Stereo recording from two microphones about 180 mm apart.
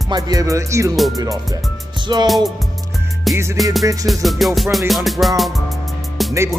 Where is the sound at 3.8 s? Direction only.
20° right (ahead or behind).